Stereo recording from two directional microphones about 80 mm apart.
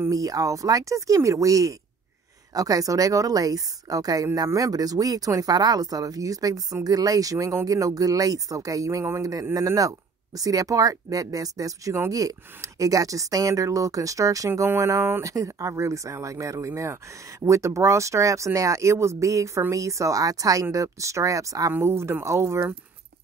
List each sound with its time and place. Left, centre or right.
0.1 s a woman's voice: right